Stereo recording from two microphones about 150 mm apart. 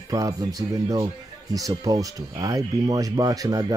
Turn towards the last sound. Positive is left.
turn(degrees=-25)  # may be behind; listen again after turning